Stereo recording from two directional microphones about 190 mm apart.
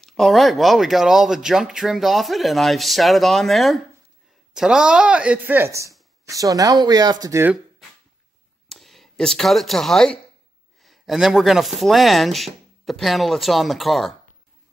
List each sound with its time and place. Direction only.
0.0 s speech: centre (ahead or behind); by 7.5 s 15° right (ahead or behind)
8.6 s speech: centre (ahead or behind)